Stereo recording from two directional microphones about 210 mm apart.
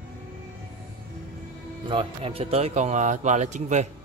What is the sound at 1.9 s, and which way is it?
A man's voice, 25° right (ahead or behind).